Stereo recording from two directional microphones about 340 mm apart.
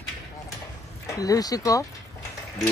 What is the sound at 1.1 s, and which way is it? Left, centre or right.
Speech, centre.